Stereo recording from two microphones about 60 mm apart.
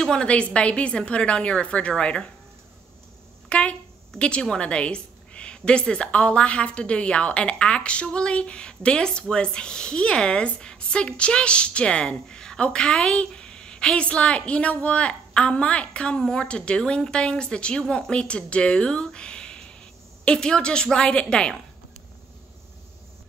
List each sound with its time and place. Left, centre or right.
0.0 s a woman's voice: centre
3.4 s a woman's voice: centre